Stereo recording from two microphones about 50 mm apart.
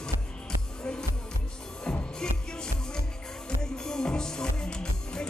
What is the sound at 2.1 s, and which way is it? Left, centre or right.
Music, centre.